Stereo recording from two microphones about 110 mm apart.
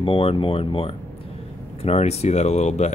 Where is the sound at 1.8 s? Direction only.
70° left (ahead or behind); by 2.9 s 90° left.